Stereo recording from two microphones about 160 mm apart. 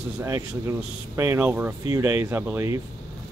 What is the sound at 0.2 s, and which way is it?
Speech, 15° right (ahead or behind).